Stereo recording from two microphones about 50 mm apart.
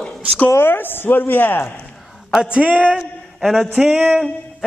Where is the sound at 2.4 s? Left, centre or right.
Right.